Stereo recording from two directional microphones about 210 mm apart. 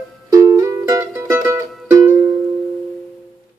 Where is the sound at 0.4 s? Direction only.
15° right (ahead or behind).